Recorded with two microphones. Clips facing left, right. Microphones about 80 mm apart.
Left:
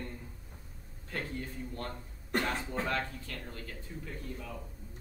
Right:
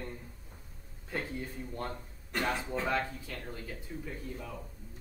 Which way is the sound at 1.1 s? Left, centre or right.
Centre.